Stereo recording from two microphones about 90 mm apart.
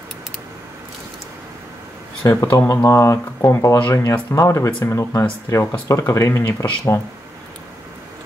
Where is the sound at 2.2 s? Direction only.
40° left (ahead or behind).